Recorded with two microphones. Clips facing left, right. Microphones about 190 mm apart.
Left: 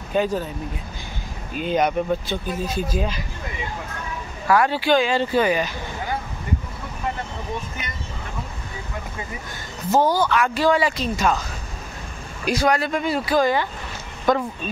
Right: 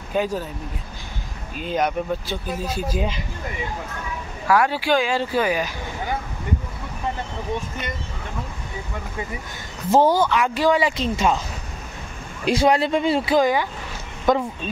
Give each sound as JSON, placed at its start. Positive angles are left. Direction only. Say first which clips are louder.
{"t": 0.1, "sound": "speech", "louder": "left 2 dB", "side_deg": -5}
{"t": 1.6, "sound": "speech", "louder": "left 2 dB", "side_deg": 0}
{"t": 4.5, "sound": "speech", "louder": "left 1 dB", "side_deg": -5}
{"t": 9.8, "sound": "speech", "louder": "right 2 dB", "side_deg": -25}
{"t": 12.4, "sound": "speech", "louder": "right 2 dB", "side_deg": -25}